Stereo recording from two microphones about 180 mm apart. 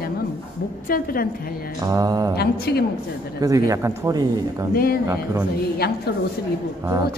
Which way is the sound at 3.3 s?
20° right (ahead or behind).